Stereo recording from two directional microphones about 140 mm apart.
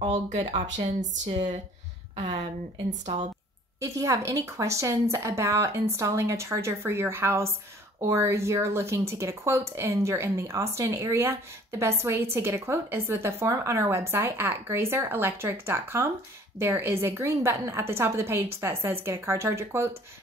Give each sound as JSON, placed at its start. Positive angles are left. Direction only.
{"t": 0.1, "sound": "speech", "side_deg": -60}
{"t": 3.8, "sound": "a woman's voice", "side_deg": -25}